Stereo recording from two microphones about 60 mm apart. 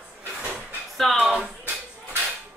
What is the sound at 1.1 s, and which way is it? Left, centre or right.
Speech, centre.